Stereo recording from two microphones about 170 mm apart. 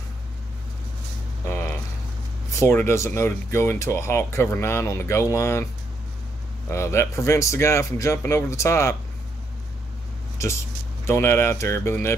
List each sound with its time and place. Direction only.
2.5 s speech: 15° left (ahead or behind)
6.7 s speech: 15° left (ahead or behind)
10.4 s speech: 15° left (ahead or behind)